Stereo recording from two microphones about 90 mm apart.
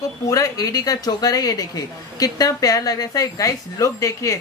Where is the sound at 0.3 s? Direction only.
40° left (ahead or behind).